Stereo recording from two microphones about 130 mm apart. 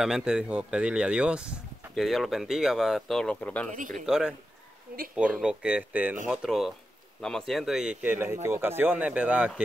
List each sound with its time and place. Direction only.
0.0 s a man's voice: 5° right (ahead or behind)
3.7 s speech: 90° right
4.0 s a man's voice: 5° right (ahead or behind)